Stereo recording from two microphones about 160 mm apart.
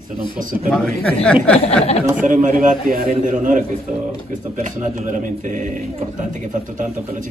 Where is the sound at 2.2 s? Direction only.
55° right (ahead or behind).